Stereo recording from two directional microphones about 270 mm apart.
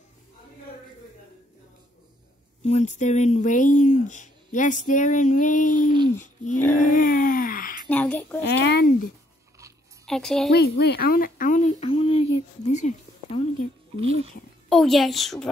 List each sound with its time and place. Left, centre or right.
2.6 s speech: left
6.2 s a sound: left
7.9 s a sound: centre
8.5 s speech: left
10.0 s a woman's voice: centre
10.5 s speech: left
14.7 s a child's voice: centre